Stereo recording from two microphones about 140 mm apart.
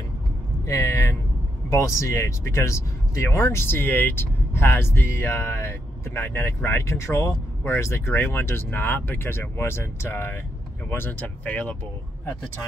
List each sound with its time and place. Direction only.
0.7 s vehicle: 20° left (ahead or behind)
1.7 s speech: 20° left (ahead or behind)